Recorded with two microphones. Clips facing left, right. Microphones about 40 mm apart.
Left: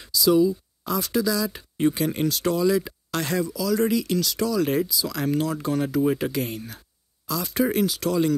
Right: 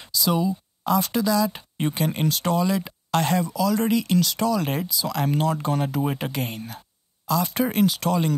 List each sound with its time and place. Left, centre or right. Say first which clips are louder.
0.0 s speech: left 4 dB; centre